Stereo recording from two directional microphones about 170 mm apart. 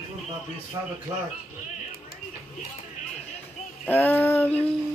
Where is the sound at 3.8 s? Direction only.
10° left (ahead or behind).